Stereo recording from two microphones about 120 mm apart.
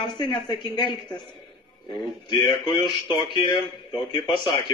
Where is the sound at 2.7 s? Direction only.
40° left (ahead or behind).